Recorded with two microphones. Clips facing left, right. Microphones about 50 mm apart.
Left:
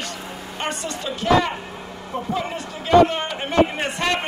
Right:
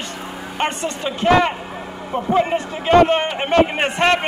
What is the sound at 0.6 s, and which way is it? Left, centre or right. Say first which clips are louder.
A man's voice: right 6 dB; right.